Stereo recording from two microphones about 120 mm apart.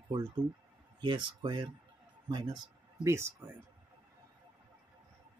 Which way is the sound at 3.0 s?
20° right (ahead or behind).